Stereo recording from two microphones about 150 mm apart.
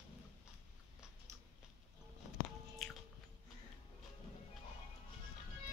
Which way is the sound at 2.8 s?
Centre (ahead or behind).